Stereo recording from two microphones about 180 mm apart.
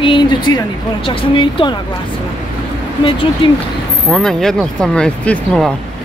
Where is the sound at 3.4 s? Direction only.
30° left (ahead or behind).